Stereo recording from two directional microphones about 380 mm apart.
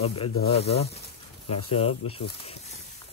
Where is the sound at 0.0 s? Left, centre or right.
Centre.